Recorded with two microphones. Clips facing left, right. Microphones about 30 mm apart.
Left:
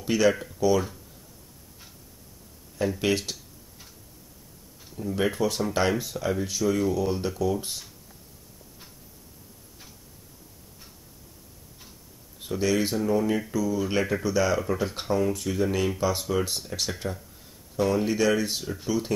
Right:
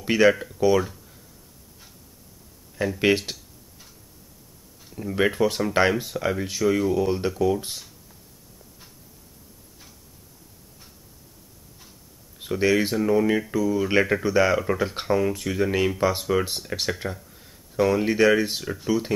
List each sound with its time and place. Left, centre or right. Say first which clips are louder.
0.0 s speech: right 4 dB; right
3.0 s speech: right 8 dB; right
5.0 s speech: right 4 dB; right
12.7 s speech: right 2 dB; centre